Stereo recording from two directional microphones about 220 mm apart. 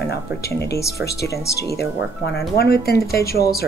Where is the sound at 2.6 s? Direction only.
45° left (ahead or behind).